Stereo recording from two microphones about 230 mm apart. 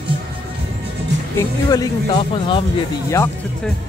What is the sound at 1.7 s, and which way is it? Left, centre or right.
Speech, left.